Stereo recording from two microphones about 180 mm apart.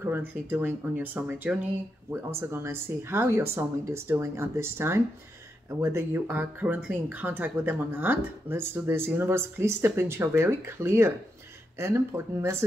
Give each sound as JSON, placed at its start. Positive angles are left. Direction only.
{"t": 0.0, "sound": "speech", "side_deg": -10}